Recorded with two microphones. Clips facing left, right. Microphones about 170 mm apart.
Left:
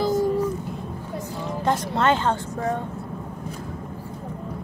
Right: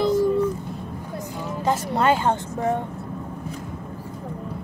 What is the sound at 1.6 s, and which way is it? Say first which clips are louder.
Speech: right 1 dB; 5° right (ahead or behind).